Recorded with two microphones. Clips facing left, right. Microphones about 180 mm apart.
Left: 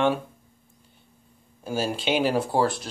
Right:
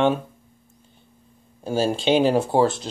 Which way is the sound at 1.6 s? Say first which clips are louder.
Right 5 dB; 30° right (ahead or behind).